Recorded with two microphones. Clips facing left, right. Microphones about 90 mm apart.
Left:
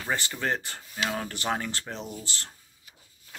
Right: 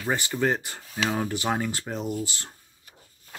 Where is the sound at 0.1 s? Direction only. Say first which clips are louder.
Right 4 dB; 15° right (ahead or behind).